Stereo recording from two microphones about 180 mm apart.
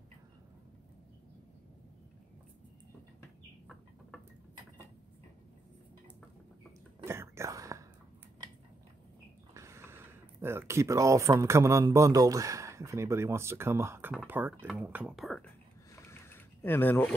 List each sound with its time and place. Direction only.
7.1 s whispering: 15° right (ahead or behind)
9.5 s speech: 15° right (ahead or behind); by 15.4 s centre (ahead or behind)
16.1 s a sound: 10° left (ahead or behind)